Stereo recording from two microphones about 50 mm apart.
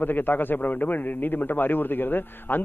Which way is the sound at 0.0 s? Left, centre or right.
Left.